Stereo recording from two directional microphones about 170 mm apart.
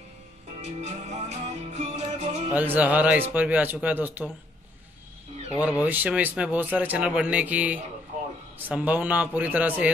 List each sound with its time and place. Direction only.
0.7 s music: 40° right (ahead or behind)
2.5 s speech: 10° right (ahead or behind)
5.6 s speech: 10° right (ahead or behind)